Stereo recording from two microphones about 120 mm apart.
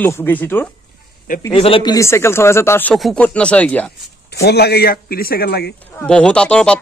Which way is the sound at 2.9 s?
5° left (ahead or behind).